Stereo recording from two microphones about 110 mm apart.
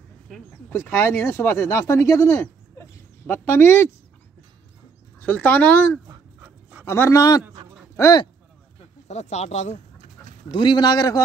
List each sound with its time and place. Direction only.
0.5 s speech: 20° left (ahead or behind)
3.4 s speech: 20° left (ahead or behind)
5.2 s speech: 15° left (ahead or behind)
9.0 s speech: 90° left
10.5 s speech: 45° left (ahead or behind)